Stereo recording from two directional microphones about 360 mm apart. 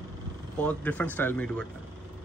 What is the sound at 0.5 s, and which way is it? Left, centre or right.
Speech, centre.